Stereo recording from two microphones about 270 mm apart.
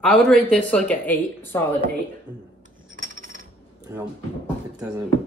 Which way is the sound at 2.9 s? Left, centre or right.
Right.